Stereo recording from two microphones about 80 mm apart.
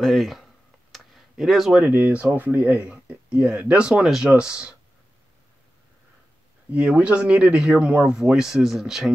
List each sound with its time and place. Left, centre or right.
0.0 s speech: centre
0.9 s tick-tock: centre
1.8 s speech: right
6.7 s speech: centre